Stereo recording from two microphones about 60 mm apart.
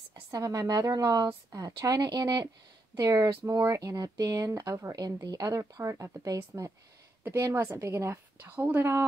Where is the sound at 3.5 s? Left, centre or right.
Right.